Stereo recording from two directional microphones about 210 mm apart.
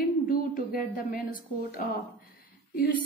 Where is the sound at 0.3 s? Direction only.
45° left (ahead or behind).